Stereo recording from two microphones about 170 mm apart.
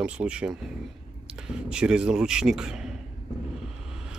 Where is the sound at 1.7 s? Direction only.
5° right (ahead or behind).